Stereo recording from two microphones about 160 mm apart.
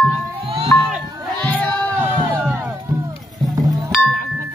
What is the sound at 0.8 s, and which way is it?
Crowd, centre (ahead or behind).